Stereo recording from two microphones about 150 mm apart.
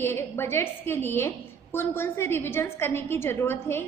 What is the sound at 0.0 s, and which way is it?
A woman's voice, 15° left (ahead or behind).